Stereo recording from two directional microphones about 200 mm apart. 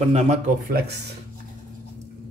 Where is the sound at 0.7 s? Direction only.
55° right (ahead or behind).